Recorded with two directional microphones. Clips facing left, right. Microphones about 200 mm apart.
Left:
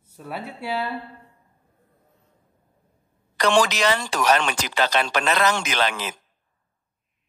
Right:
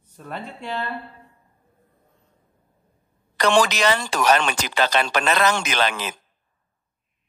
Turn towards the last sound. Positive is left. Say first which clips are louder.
# right 1 dB
turn(degrees=-55)  # may be behind; listen again after turning